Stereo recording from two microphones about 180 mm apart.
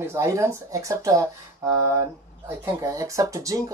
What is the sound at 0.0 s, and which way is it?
Speech, 15° right (ahead or behind).